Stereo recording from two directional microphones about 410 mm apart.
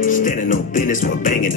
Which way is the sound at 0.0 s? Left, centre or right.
Centre.